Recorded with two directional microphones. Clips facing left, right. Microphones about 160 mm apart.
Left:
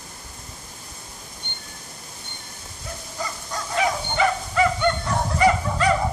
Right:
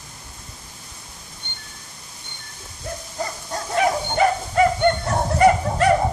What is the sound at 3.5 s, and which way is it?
Bow-wow, 50° right (ahead or behind).